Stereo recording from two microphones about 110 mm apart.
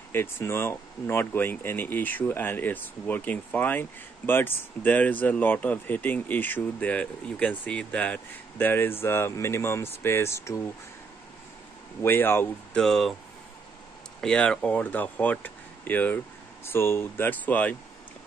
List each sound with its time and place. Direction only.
0.1 s speech: 20° left (ahead or behind)
12.0 s speech: 20° left (ahead or behind)
12.7 s speech: 5° left (ahead or behind)
14.2 s speech: 10° left (ahead or behind)